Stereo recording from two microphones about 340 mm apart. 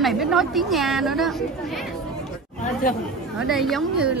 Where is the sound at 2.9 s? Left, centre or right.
Left.